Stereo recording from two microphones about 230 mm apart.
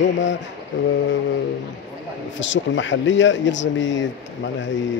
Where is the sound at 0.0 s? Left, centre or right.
Left.